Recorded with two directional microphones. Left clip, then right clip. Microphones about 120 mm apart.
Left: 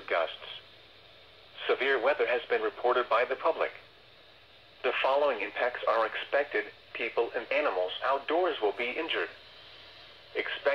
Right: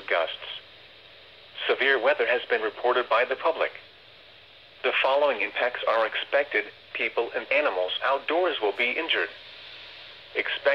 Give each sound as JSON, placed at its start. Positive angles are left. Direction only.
{"t": 0.0, "sound": "a man's voice", "side_deg": -20}
{"t": 4.8, "sound": "speech", "side_deg": -20}